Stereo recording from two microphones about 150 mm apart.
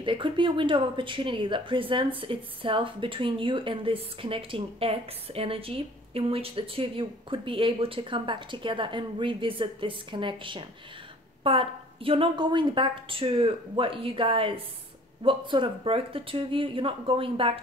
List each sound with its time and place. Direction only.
0.0 s speech: 35° right (ahead or behind)